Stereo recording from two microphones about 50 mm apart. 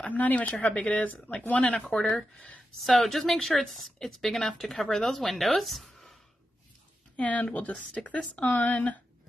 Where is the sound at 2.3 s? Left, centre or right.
Left.